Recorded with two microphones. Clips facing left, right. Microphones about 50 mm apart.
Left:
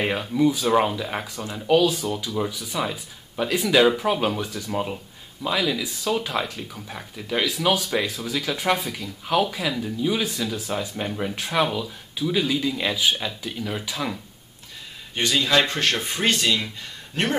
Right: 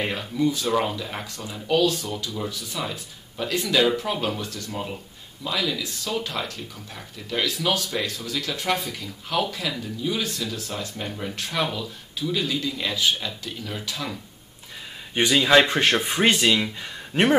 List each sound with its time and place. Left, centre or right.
0.0 s speech: centre
15.1 s speech: centre